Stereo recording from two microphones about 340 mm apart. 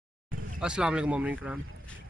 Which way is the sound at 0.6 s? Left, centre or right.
Centre.